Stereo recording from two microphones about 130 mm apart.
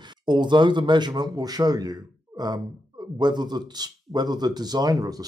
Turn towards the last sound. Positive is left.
turn(degrees=-30)  # may be behind; listen again after turning